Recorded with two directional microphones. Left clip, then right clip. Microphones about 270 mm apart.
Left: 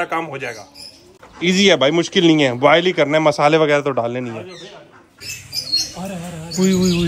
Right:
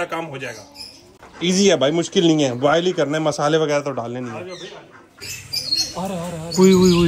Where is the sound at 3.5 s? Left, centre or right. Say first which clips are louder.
Left 4 dB; left.